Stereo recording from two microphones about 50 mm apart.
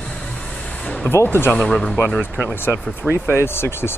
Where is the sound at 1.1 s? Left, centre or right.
Left.